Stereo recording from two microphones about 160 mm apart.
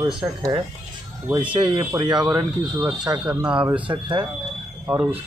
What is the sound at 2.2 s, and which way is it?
Speech, 10° right (ahead or behind).